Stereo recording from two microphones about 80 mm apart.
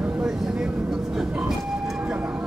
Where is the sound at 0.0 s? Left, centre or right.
Centre.